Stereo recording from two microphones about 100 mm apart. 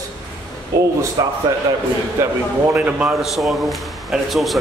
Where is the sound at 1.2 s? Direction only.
40° right (ahead or behind).